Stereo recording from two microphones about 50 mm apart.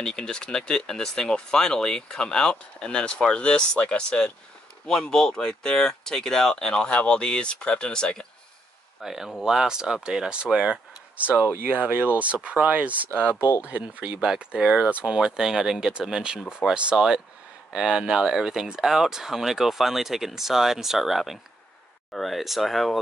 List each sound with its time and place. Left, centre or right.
0.0 s speech: centre
9.0 s speech: centre
11.1 s speech: right
13.4 s speech: left
13.7 s speech: right
14.2 s speech: centre